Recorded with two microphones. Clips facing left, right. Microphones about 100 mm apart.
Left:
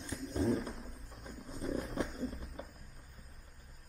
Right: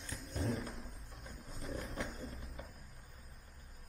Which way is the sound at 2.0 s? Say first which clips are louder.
Left 5 dB; centre (ahead or behind).